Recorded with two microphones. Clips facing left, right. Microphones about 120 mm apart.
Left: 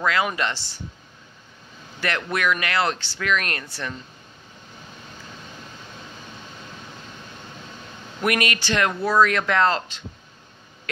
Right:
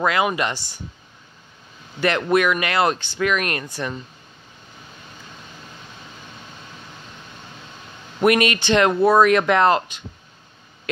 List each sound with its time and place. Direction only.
0.0 s speech: 20° right (ahead or behind)
2.0 s speech: 25° right (ahead or behind)
8.2 s speech: 25° right (ahead or behind)